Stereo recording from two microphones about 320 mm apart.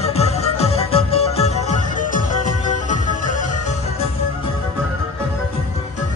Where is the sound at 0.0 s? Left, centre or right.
Centre.